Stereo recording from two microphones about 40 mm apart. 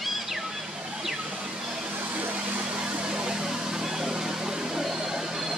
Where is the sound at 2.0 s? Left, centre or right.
Right.